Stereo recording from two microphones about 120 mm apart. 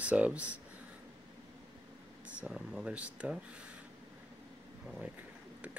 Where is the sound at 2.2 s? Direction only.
10° right (ahead or behind).